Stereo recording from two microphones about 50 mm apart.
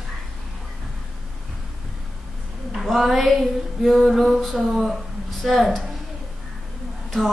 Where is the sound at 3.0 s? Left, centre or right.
Centre.